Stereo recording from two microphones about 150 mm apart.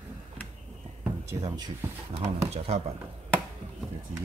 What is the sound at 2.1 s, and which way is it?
Speech, 45° right (ahead or behind).